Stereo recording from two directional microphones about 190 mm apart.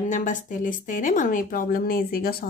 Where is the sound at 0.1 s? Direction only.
40° left (ahead or behind).